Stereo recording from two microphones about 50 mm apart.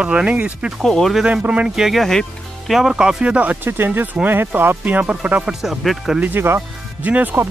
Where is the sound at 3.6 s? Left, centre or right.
Right.